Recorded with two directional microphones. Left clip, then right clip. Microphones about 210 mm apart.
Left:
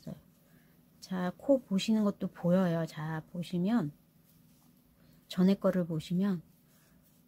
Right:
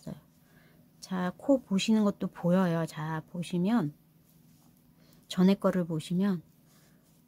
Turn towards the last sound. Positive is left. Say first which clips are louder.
# right 3 dB
turn(degrees=-10)  # may be behind; listen again after turning